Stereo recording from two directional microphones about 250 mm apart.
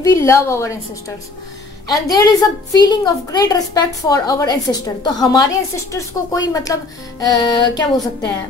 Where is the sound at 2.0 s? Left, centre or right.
Centre.